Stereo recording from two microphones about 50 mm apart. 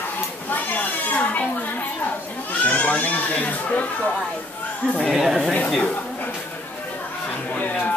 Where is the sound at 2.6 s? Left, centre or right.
Left.